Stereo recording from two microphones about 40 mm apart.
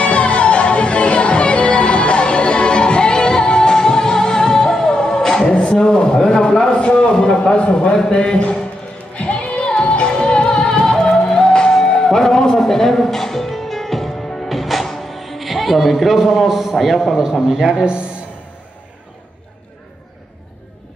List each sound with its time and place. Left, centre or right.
0.0 s music: left
5.5 s a sound: left
8.1 s a man's voice: left
9.1 s music: left; by 16.7 s centre
16.7 s a man's voice: centre